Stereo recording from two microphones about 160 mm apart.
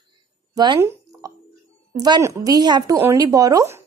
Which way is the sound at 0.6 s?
20° right (ahead or behind).